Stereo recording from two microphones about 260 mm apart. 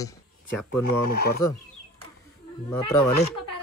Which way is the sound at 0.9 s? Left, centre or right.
Left.